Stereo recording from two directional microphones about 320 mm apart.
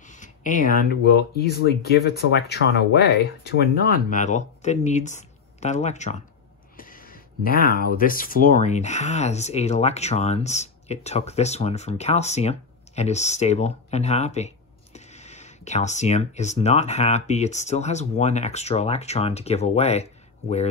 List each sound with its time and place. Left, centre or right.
0.1 s speech: left